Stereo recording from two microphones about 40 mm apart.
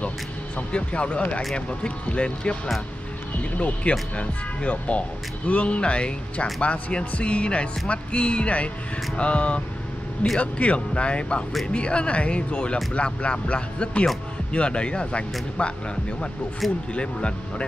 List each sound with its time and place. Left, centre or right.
0.6 s speech: left
16.9 s speech: left